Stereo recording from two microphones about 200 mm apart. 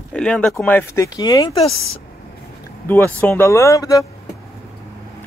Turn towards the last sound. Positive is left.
turn(degrees=15)  # may be behind; listen again after turning